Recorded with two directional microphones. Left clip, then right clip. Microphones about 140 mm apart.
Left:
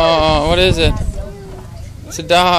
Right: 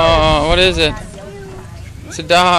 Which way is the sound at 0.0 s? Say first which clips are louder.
Right 1 dB; 10° left (ahead or behind).